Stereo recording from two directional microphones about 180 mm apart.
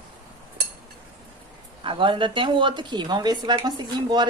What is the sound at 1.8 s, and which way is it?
Speech, 30° right (ahead or behind).